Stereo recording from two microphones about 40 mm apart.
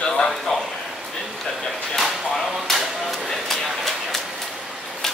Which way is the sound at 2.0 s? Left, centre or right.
Centre.